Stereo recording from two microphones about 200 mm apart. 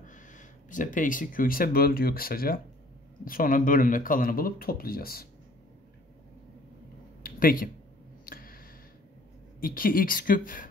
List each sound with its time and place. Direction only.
0.0 s speech: 40° left (ahead or behind)
7.2 s a sound: 45° left (ahead or behind)
9.6 s speech: 45° left (ahead or behind)